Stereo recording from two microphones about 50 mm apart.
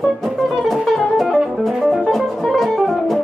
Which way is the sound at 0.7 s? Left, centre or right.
Centre.